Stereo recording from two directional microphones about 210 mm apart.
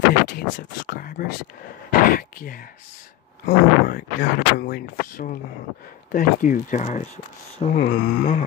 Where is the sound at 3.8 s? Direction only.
45° left (ahead or behind).